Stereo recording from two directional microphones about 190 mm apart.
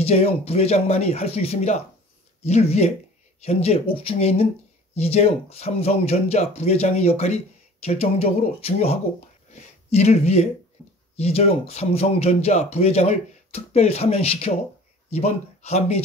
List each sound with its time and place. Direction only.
0.0 s speech: 35° left (ahead or behind)